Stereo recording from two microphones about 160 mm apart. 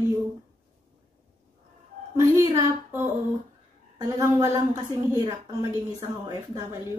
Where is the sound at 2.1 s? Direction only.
15° right (ahead or behind).